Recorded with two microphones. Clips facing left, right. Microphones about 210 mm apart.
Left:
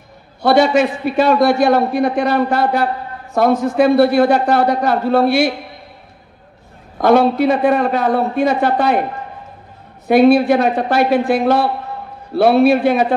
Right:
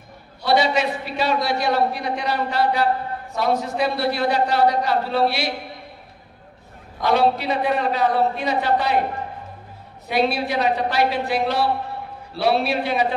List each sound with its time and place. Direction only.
0.4 s a man's voice: 50° left (ahead or behind)
7.0 s a man's voice: 50° left (ahead or behind)
10.0 s a man's voice: 50° left (ahead or behind)